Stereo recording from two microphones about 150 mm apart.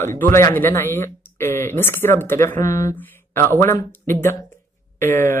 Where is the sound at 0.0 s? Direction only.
15° left (ahead or behind).